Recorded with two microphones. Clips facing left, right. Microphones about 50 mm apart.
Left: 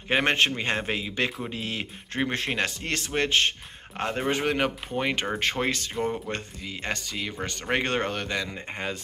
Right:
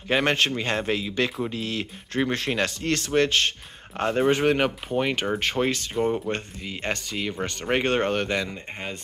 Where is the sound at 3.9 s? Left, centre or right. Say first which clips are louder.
Right 5 dB; centre.